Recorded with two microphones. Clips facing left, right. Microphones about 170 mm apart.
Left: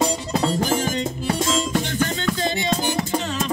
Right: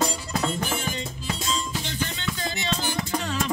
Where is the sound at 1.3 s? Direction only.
90° left.